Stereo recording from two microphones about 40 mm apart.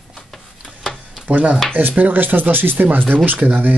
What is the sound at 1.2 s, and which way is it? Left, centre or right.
Speech, right.